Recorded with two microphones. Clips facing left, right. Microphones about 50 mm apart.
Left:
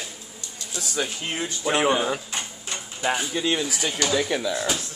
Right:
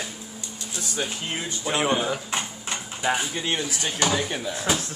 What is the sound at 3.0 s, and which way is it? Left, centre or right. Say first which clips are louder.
Speech: even; centre.